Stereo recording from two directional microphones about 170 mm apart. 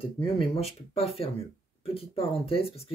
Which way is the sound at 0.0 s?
30° left (ahead or behind).